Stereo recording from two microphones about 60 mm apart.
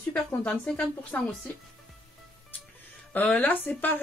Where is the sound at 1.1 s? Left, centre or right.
Left.